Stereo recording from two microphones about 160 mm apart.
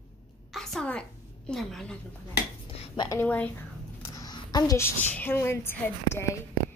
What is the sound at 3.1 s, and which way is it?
Speech, 10° left (ahead or behind).